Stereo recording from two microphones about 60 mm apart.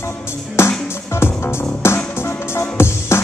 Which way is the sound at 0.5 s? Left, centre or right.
Left.